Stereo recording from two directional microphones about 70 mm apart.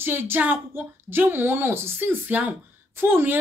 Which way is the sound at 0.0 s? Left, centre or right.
Right.